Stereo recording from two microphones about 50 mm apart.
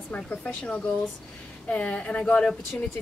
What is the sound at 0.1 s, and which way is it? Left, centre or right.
Speech, left.